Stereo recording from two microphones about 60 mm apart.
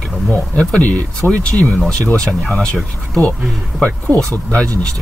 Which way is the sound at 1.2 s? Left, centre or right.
Left.